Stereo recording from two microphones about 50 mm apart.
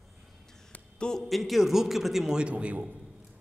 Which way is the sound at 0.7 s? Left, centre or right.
Centre.